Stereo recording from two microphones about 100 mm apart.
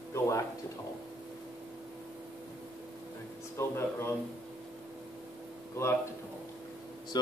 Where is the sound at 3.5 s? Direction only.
25° left (ahead or behind).